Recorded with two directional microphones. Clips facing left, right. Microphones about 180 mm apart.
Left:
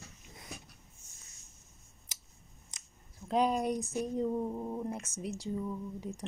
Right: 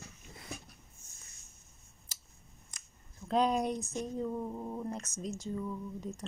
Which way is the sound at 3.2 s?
10° left (ahead or behind).